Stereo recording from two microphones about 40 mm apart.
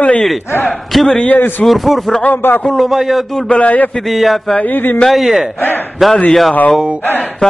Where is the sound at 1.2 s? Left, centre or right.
Left.